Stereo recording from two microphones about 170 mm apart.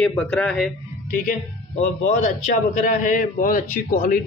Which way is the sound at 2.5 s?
45° left (ahead or behind).